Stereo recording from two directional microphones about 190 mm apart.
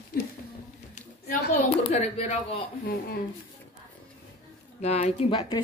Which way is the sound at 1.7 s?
35° left (ahead or behind).